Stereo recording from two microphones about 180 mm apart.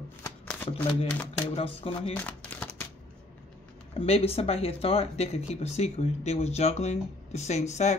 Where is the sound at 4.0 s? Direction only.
35° left (ahead or behind).